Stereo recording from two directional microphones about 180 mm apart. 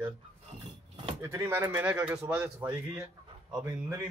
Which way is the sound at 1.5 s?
10° right (ahead or behind).